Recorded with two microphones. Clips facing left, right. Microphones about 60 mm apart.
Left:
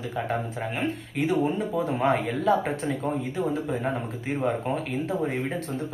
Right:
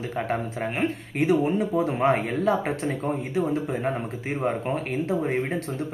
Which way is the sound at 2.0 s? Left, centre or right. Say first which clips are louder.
Even; right.